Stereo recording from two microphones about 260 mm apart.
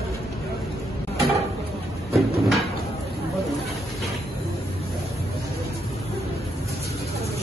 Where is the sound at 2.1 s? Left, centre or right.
Centre.